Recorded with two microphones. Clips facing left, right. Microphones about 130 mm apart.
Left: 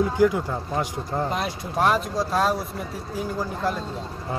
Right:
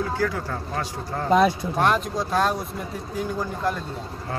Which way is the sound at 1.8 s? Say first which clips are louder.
Left 1 dB; 5° left (ahead or behind).